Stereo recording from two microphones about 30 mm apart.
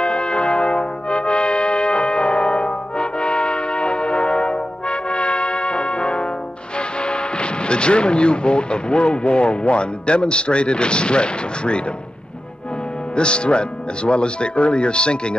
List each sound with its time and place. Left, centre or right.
0.0 s brass instrument: left
6.8 s speech: left
13.1 s speech: left